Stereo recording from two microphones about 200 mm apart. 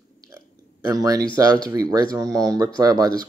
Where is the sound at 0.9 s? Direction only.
15° right (ahead or behind).